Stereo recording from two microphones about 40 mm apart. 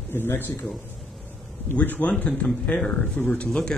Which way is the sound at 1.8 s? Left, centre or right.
Left.